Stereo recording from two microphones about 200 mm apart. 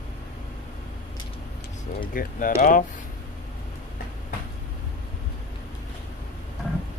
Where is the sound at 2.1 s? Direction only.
45° left (ahead or behind).